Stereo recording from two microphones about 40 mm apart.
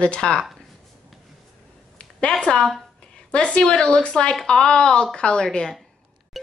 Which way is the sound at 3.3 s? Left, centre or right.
Left.